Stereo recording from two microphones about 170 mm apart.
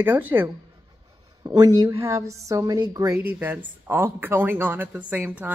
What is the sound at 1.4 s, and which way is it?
A woman's voice, 20° right (ahead or behind).